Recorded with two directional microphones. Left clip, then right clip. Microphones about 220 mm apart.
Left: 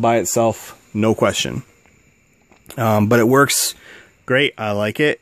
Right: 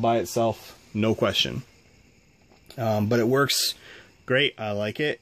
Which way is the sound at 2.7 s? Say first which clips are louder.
Left 9 dB; 35° left (ahead or behind).